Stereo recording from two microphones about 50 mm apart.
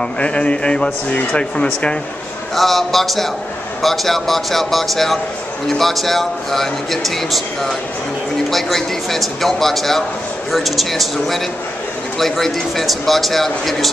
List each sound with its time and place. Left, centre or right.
0.2 s speech: left
2.5 s speech: centre